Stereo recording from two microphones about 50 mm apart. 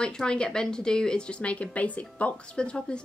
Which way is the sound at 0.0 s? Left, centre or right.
Centre.